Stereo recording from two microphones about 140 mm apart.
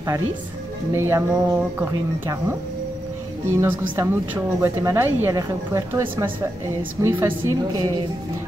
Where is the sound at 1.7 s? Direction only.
15° right (ahead or behind).